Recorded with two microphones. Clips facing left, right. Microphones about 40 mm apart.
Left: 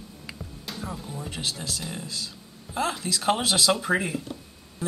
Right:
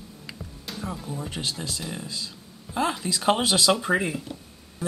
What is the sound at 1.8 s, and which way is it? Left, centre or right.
Speech, centre.